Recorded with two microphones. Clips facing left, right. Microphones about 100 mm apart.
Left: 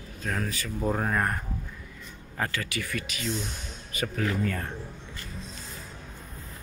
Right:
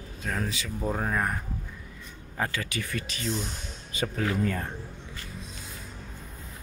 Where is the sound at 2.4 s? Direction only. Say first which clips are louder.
Even; 20° right (ahead or behind).